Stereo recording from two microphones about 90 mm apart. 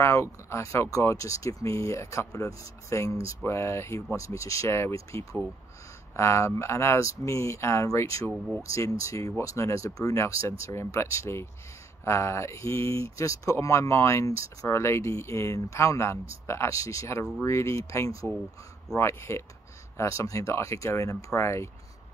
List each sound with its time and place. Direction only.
0.0 s speech: 30° left (ahead or behind)